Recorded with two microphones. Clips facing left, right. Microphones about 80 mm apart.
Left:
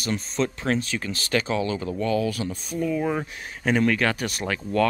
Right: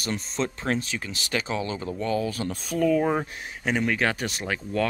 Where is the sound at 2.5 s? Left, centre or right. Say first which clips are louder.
Right 4 dB; right.